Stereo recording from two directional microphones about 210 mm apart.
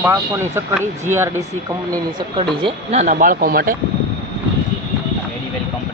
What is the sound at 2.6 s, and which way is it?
Speech, 35° right (ahead or behind).